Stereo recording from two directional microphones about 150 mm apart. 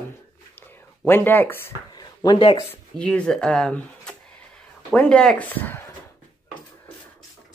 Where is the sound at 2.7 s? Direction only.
5° left (ahead or behind).